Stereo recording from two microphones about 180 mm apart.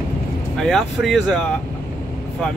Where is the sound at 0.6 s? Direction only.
Centre (ahead or behind).